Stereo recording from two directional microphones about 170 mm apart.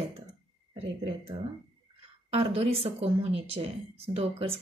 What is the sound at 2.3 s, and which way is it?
Speech, 35° right (ahead or behind).